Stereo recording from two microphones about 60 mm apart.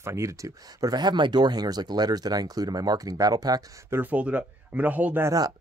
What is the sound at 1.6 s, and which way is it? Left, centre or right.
Speech, right.